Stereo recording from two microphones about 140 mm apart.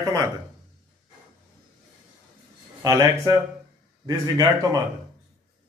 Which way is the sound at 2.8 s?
25° right (ahead or behind).